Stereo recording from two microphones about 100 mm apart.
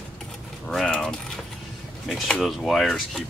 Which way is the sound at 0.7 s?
5° left (ahead or behind).